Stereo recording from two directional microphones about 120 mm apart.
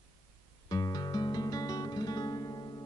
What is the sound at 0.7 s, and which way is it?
Music, 30° left (ahead or behind).